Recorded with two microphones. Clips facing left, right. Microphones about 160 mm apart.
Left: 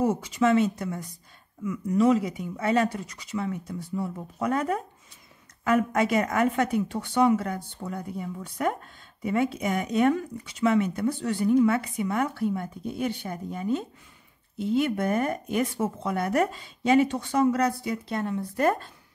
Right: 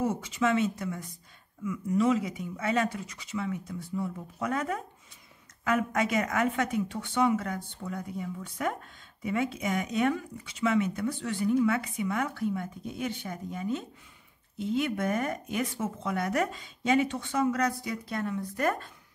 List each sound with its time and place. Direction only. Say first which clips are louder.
0.2 s speech: left 5 dB; 40° left (ahead or behind)